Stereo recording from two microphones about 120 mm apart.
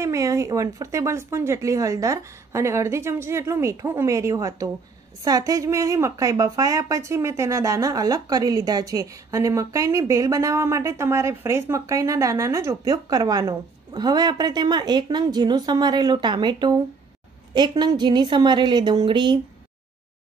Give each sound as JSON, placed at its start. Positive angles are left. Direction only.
{"t": 0.0, "sound": "a woman's voice", "side_deg": -25}